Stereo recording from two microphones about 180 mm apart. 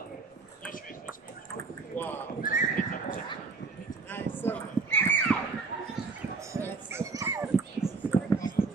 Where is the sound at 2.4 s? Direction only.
50° left (ahead or behind).